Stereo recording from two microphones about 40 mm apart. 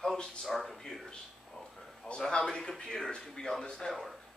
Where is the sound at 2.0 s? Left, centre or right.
Left.